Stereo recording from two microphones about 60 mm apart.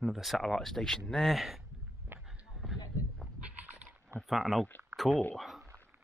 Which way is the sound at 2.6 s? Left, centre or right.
Centre.